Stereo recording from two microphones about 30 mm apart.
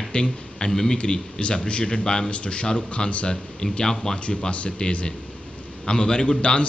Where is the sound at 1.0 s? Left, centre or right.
Left.